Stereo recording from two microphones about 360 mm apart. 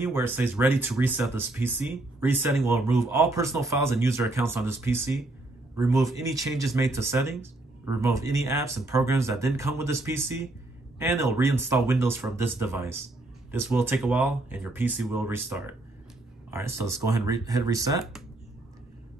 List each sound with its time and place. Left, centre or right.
0.0 s speech: centre